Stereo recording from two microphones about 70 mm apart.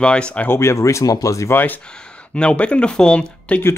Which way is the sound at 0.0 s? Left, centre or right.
Centre.